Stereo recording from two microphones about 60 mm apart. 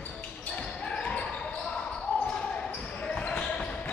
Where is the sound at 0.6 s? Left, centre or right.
Centre.